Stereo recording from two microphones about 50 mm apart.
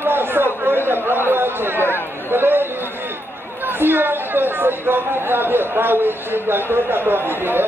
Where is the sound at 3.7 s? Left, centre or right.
Right.